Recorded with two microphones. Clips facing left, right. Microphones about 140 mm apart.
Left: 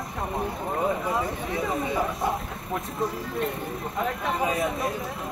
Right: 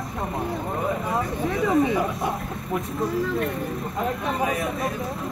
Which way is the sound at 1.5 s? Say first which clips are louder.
Right 7 dB; centre (ahead or behind).